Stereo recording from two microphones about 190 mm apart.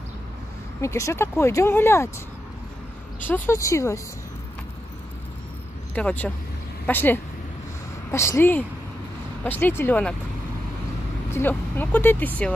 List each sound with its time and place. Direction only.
0.7 s speech: 15° left (ahead or behind)
3.3 s speech: 10° left (ahead or behind)
5.9 s speech: 10° left (ahead or behind)
11.3 s speech: 10° left (ahead or behind)